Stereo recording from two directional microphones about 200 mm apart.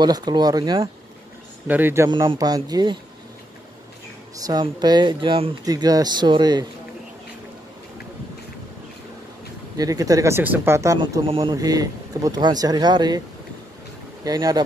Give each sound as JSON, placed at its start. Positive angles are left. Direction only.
{"t": 0.0, "sound": "speech", "side_deg": -20}
{"t": 2.0, "sound": "speech", "side_deg": -25}
{"t": 4.4, "sound": "speech", "side_deg": -20}
{"t": 9.8, "sound": "speech", "side_deg": -15}
{"t": 11.2, "sound": "speech", "side_deg": -25}
{"t": 14.2, "sound": "speech", "side_deg": -20}